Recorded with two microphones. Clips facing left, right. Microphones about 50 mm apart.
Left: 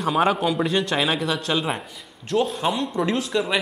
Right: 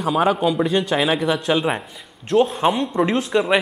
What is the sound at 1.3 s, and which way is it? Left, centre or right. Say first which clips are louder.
A man's voice: right 5 dB; centre.